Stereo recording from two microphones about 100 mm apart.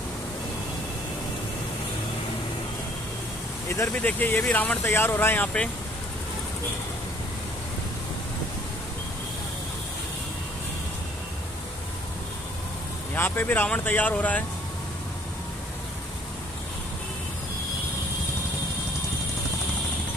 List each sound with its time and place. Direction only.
3.6 s speech: 30° left (ahead or behind)
3.9 s speech: 15° left (ahead or behind)
13.1 s speech: 20° left (ahead or behind)